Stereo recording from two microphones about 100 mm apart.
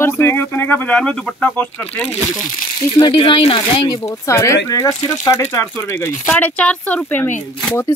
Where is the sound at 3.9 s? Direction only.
30° left (ahead or behind).